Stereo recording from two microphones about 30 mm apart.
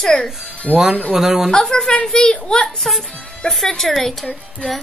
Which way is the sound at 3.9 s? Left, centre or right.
Centre.